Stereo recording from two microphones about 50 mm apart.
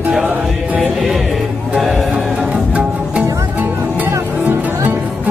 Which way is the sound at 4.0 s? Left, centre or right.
Right.